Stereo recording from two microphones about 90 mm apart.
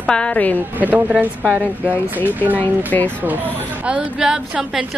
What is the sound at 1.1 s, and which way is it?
Speech, 5° right (ahead or behind).